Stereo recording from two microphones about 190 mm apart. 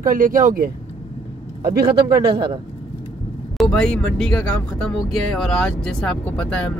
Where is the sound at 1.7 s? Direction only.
55° right (ahead or behind).